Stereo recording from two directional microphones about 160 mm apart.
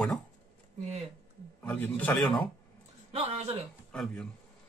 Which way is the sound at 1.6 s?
10° left (ahead or behind).